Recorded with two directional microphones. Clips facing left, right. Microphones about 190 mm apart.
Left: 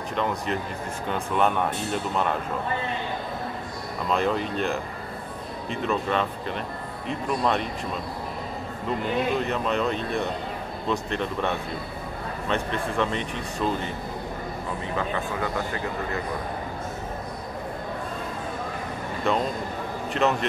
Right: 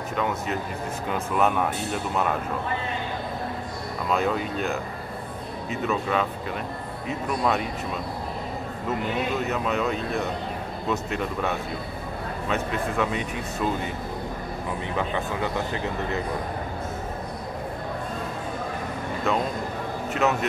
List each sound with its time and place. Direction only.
0.1 s speech: 5° right (ahead or behind)
4.1 s speech: 5° right (ahead or behind)
9.4 s speech: 5° right (ahead or behind)
15.0 s speech: 20° right (ahead or behind)
19.3 s a man's voice: 5° right (ahead or behind)